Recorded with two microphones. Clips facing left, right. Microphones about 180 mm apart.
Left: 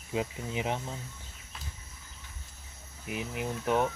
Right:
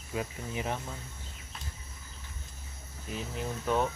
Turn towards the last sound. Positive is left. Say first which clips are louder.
# left 1 dB
turn(degrees=15)  # may be behind; listen again after turning